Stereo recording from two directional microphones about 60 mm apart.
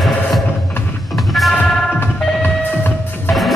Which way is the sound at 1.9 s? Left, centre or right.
Left.